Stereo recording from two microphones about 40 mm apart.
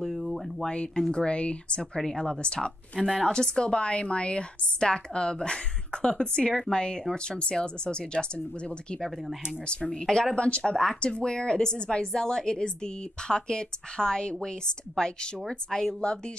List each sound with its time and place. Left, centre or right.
0.0 s a sound: centre
0.6 s speech: centre
10.3 s speech: left
10.6 s speech: centre